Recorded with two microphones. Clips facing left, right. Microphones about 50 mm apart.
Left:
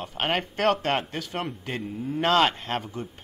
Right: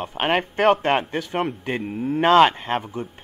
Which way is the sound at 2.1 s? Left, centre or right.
Right.